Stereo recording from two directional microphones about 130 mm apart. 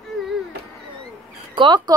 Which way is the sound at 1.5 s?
35° right (ahead or behind).